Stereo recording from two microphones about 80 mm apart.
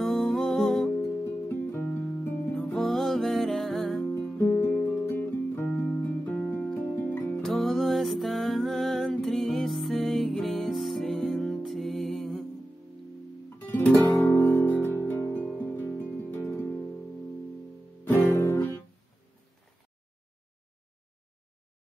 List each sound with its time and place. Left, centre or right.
0.0 s music: centre
0.9 s music: left
2.7 s music: centre
4.4 s music: left
5.9 s music: centre; by 7.4 s left
7.4 s music: centre
13.7 s guitar: left
15.3 s music: left
18.2 s music: left